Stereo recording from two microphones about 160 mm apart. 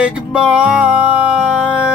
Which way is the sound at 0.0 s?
5° right (ahead or behind).